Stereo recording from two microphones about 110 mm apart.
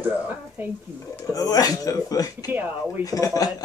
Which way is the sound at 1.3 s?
30° left (ahead or behind).